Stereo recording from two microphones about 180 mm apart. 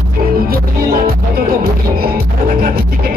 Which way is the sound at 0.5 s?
60° right (ahead or behind).